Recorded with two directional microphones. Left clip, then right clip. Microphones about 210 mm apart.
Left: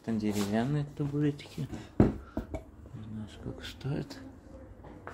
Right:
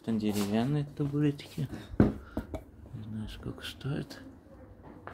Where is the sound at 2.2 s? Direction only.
15° right (ahead or behind).